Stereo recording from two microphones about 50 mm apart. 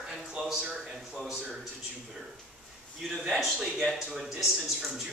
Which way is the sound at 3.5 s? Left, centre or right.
Centre.